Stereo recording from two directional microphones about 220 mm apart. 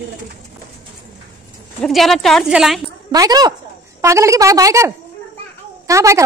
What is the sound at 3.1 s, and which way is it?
A woman's voice, 15° right (ahead or behind).